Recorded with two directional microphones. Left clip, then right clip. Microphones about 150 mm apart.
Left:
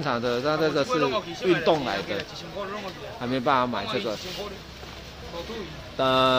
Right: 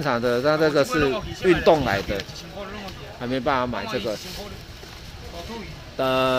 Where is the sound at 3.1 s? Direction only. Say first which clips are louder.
Even; 15° right (ahead or behind).